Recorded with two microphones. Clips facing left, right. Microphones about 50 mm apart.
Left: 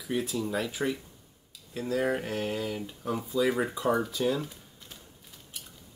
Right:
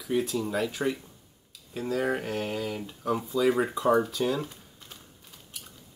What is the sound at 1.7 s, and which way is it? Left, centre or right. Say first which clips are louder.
Speech: even; centre.